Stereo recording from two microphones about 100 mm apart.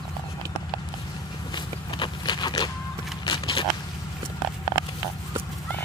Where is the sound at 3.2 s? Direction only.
50° left (ahead or behind).